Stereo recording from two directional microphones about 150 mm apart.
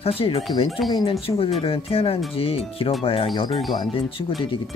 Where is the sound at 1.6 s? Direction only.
40° left (ahead or behind).